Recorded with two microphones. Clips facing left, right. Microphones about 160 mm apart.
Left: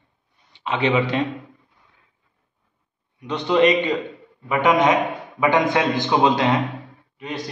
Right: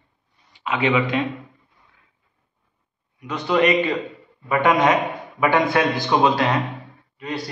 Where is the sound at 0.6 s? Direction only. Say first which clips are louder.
Even; 35° left (ahead or behind).